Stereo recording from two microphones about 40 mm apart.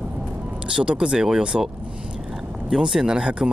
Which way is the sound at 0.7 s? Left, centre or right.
Right.